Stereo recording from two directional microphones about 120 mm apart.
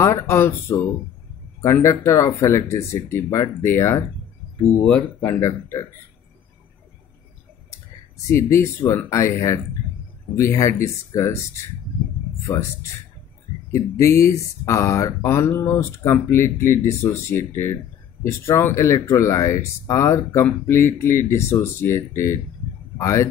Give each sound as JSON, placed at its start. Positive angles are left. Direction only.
{"t": 0.0, "sound": "speech", "side_deg": 20}
{"t": 5.2, "sound": "speech", "side_deg": 25}
{"t": 8.3, "sound": "speech", "side_deg": 20}
{"t": 13.7, "sound": "a man's voice", "side_deg": 25}